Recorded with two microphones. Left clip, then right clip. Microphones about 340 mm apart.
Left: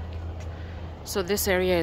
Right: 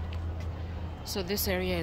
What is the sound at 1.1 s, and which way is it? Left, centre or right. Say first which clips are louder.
Speech: left 7 dB; centre.